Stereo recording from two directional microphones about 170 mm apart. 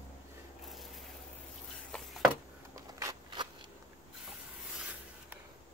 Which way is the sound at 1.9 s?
Centre (ahead or behind).